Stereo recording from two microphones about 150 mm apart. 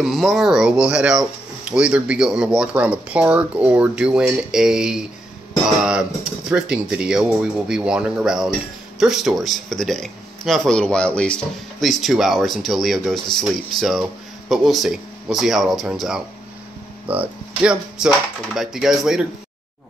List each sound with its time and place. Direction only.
0.0 s speech: centre (ahead or behind)
6.5 s speech: 5° right (ahead or behind)